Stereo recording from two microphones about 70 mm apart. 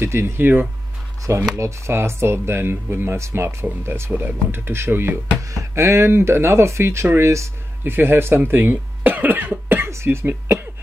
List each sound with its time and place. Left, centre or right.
0.0 s speech: right
1.3 s speech: right
5.4 s speech: right
7.8 s cough: right
9.8 s speech: right